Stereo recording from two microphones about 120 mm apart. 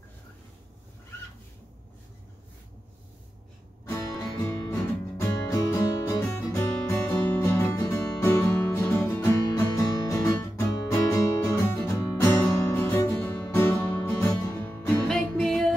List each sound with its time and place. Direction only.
4.2 s music: 25° left (ahead or behind)
15.0 s music: 5° left (ahead or behind)